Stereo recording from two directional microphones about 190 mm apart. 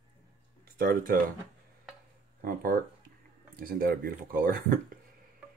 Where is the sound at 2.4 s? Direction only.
45° right (ahead or behind).